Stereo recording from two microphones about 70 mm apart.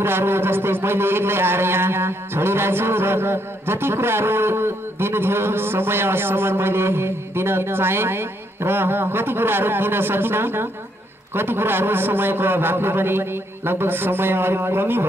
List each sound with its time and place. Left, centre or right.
0.0 s speech: right